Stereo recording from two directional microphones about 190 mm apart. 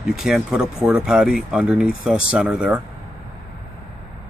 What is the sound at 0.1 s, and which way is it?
Speech, centre (ahead or behind).